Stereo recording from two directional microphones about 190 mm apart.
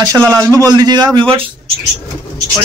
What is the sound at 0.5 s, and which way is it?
Speech, 20° right (ahead or behind).